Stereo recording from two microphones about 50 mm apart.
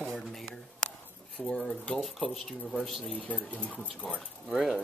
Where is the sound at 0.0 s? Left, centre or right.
Centre.